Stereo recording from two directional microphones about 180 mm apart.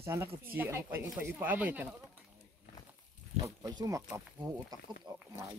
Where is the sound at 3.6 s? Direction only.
20° right (ahead or behind).